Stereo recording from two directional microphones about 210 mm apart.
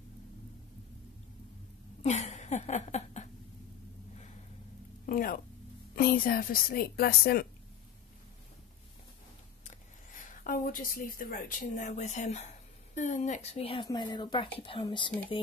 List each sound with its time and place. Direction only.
2.0 s a sound: 35° left (ahead or behind)
5.0 s a woman's voice: 40° left (ahead or behind)
9.7 s speech: 40° left (ahead or behind)